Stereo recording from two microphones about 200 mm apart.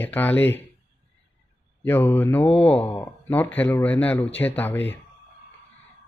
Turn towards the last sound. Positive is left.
turn(degrees=10)  # may be behind; listen again after turning